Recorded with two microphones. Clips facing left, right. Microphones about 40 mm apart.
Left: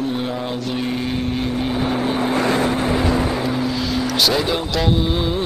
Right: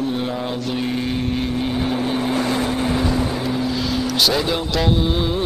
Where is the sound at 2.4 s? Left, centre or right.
Centre.